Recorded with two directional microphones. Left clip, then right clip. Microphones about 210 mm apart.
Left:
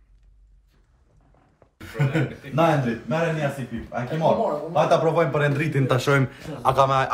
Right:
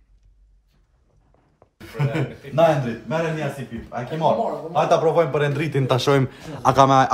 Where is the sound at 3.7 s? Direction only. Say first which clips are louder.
Left 1 dB; 40° right (ahead or behind).